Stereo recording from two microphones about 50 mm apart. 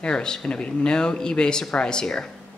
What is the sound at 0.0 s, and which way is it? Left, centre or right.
Speech, centre.